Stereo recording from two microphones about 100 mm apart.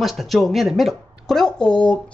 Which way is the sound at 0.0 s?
Centre (ahead or behind).